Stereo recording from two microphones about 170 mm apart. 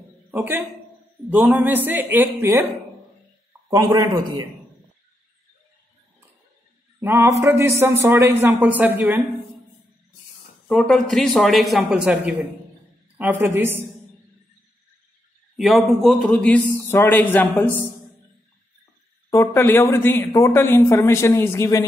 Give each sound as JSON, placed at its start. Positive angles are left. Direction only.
{"t": 0.3, "sound": "a man's voice", "side_deg": -10}
{"t": 3.7, "sound": "a man's voice", "side_deg": -25}
{"t": 7.0, "sound": "a sound", "side_deg": -15}
{"t": 7.4, "sound": "a woman's voice", "side_deg": -15}
{"t": 10.7, "sound": "a man's voice", "side_deg": 5}
{"t": 15.5, "sound": "speech", "side_deg": 0}
{"t": 19.3, "sound": "speech", "side_deg": 15}